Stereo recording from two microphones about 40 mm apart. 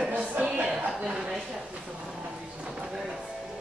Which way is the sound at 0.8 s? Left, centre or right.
Right.